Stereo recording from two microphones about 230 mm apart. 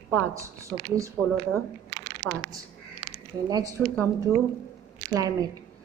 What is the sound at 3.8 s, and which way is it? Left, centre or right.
Speech, centre.